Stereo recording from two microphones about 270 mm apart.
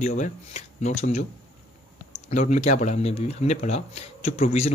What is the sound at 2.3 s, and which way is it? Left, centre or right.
A man's voice, left.